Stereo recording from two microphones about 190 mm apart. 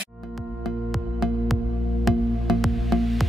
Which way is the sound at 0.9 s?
Centre (ahead or behind).